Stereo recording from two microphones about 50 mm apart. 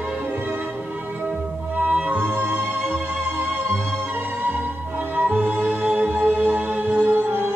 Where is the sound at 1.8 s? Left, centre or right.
Right.